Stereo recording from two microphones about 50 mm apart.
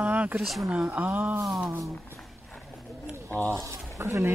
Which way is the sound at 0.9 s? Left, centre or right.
Right.